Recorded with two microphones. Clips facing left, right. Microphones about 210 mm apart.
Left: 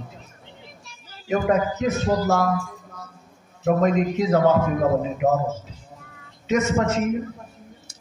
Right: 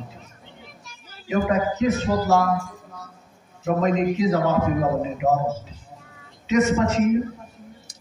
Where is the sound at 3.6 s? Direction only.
50° left (ahead or behind).